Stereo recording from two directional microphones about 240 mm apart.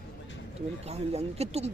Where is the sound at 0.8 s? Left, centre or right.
Right.